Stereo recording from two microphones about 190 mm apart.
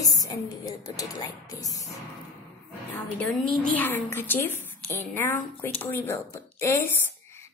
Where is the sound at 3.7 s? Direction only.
10° left (ahead or behind).